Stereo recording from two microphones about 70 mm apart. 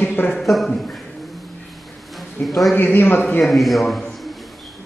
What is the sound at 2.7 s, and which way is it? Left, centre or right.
Speech, left.